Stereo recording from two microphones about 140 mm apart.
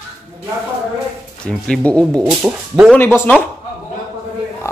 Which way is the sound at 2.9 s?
15° left (ahead or behind).